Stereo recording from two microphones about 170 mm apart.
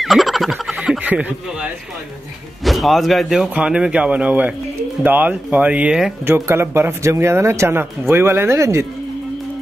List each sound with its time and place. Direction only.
0.0 s fowl: centre (ahead or behind)
2.6 s speech: centre (ahead or behind); by 8.8 s 15° right (ahead or behind)